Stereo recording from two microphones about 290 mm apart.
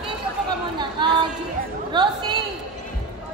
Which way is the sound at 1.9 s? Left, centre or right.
Centre.